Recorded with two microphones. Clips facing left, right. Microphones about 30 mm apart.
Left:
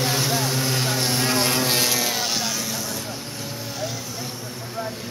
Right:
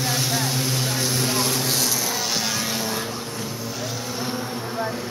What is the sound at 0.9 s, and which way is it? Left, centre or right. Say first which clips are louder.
Vehicle: left 1 dB; left.